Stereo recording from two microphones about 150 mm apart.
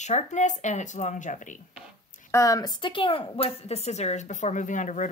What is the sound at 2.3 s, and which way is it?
Speech, 25° left (ahead or behind).